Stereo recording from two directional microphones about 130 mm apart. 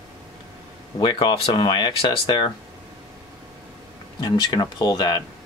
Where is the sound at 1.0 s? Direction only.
35° left (ahead or behind).